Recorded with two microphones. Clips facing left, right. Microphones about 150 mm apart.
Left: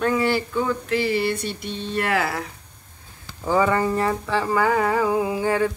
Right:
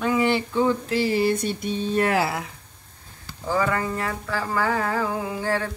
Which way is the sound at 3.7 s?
25° left (ahead or behind).